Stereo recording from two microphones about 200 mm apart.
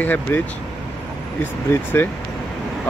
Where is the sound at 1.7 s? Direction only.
10° left (ahead or behind).